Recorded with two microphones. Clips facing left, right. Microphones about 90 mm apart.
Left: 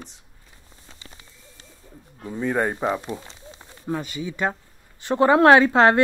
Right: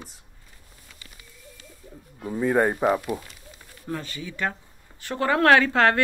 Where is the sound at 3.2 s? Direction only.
25° left (ahead or behind).